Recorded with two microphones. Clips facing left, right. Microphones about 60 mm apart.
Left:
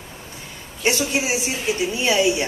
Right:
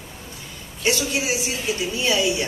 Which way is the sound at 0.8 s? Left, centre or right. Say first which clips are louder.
Left 2 dB; left.